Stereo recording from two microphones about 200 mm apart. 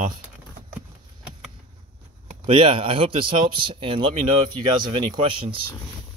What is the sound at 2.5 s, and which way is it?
Speech, 25° right (ahead or behind).